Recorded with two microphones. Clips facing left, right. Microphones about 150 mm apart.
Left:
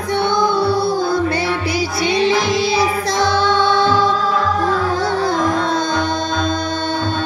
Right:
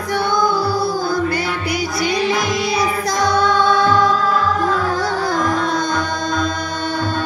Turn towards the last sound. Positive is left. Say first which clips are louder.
# left 1 dB
turn(degrees=25)  # may be behind; listen again after turning